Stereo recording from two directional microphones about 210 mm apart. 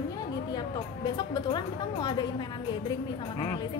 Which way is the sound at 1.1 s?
20° left (ahead or behind).